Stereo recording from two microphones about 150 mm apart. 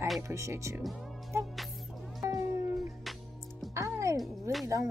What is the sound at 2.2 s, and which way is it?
Cat, 20° right (ahead or behind).